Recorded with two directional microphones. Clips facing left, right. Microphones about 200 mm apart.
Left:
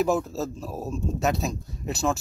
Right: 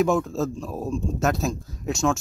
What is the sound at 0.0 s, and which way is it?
Speech, 5° left (ahead or behind).